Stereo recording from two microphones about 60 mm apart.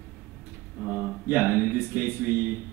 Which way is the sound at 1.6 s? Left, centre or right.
Right.